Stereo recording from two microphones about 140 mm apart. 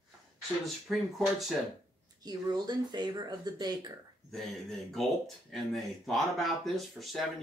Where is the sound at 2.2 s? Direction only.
30° right (ahead or behind).